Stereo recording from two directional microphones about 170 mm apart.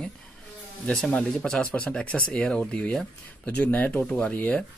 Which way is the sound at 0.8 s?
5° left (ahead or behind).